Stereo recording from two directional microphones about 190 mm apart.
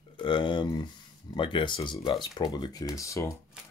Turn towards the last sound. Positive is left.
turn(degrees=15)  # may be behind; listen again after turning